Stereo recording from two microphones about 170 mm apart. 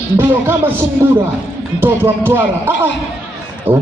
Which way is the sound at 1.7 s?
10° right (ahead or behind).